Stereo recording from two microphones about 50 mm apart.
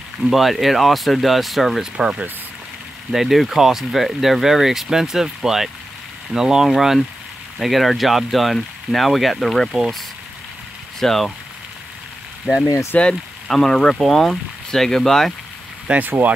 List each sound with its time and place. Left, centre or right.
0.2 s speech: centre
2.0 s speech: centre
3.1 s speech: centre
11.0 s speech: centre
12.9 s speech: left
13.5 s speech: centre
16.0 s speech: right